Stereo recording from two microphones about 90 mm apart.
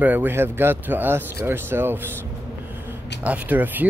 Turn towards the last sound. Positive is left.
turn(degrees=-20)  # may be behind; listen again after turning